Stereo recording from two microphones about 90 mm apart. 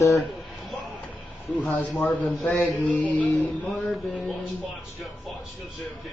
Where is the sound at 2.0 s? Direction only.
15° left (ahead or behind).